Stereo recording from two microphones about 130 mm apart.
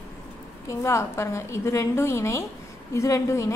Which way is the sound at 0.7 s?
20° left (ahead or behind).